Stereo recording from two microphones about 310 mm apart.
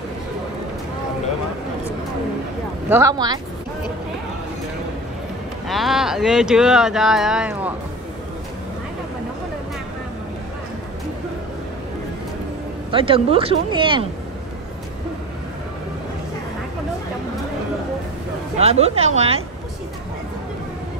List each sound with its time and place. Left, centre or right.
2.9 s speech: centre
5.7 s speech: centre
12.9 s speech: centre
18.6 s a woman's voice: centre